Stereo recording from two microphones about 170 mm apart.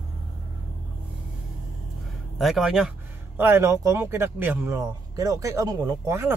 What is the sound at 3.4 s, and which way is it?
A man's voice, 15° right (ahead or behind).